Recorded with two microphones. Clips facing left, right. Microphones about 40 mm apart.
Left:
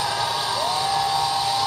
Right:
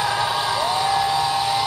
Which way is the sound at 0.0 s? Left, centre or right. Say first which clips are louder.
Right 3 dB; right.